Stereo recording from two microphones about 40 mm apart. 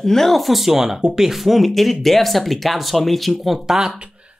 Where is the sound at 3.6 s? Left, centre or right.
Centre.